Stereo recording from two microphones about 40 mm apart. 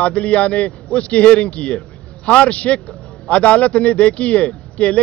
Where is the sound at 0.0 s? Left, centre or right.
Left.